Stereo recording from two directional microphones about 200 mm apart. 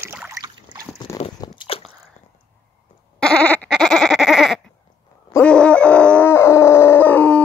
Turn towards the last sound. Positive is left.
turn(degrees=10)  # may be behind; listen again after turning